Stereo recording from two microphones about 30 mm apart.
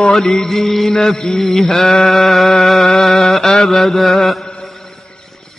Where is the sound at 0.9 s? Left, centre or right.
Left.